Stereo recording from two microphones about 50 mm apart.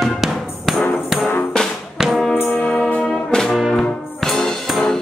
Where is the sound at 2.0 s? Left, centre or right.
Centre.